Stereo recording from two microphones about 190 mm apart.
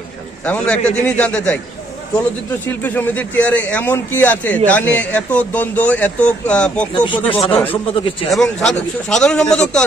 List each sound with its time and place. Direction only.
0.5 s speech: 5° left (ahead or behind)
2.6 s speech: 10° left (ahead or behind)
7.1 s speech: 30° left (ahead or behind)
8.3 s a man's voice: 5° left (ahead or behind)